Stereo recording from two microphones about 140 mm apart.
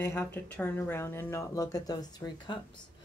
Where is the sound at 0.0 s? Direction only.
15° left (ahead or behind).